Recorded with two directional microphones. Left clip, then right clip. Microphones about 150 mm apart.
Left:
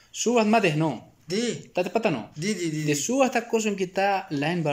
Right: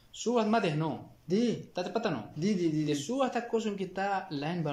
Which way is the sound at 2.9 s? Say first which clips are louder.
Left 8 dB; 15° left (ahead or behind).